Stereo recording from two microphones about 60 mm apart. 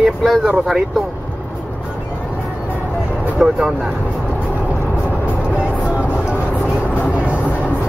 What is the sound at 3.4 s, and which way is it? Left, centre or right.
Speech, centre.